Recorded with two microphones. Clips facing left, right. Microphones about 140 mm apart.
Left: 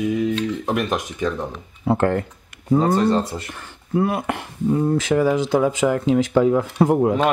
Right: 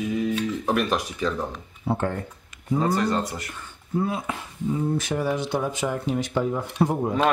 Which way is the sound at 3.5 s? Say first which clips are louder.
Left 5 dB; 70° left (ahead or behind).